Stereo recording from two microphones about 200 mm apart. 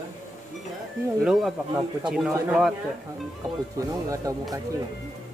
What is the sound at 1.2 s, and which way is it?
Speech, centre (ahead or behind).